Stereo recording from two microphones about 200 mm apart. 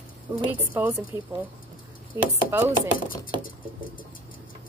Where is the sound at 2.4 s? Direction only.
15° right (ahead or behind).